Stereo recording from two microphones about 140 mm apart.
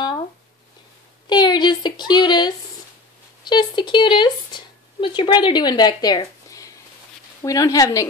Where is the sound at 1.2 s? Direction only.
30° left (ahead or behind).